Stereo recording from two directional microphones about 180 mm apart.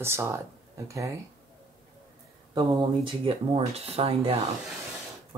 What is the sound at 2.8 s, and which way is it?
Speech, 30° right (ahead or behind).